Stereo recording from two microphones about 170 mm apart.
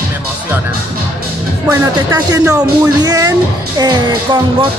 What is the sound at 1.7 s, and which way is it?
Speech, 15° right (ahead or behind).